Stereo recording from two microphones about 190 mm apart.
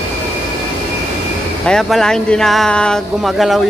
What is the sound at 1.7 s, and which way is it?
Speech, centre (ahead or behind).